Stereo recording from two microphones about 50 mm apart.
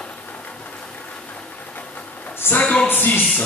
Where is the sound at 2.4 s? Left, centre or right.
Left.